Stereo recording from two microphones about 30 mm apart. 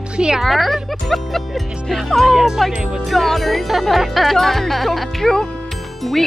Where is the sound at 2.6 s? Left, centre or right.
Centre.